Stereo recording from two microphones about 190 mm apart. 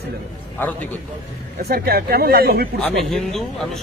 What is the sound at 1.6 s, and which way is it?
Speech, 55° right (ahead or behind).